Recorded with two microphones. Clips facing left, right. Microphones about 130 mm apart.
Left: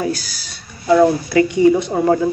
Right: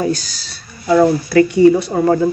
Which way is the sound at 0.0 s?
5° left (ahead or behind).